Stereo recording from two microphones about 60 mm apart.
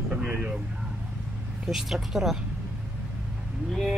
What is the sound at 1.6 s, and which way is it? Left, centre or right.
Speech, centre.